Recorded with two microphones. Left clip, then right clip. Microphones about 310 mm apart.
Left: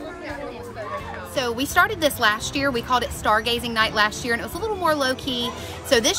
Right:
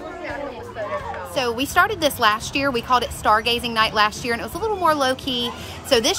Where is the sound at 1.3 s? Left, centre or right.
Centre.